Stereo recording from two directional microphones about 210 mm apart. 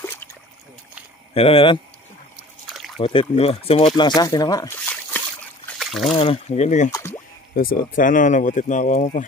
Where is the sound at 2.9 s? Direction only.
25° left (ahead or behind); by 5.2 s 10° left (ahead or behind).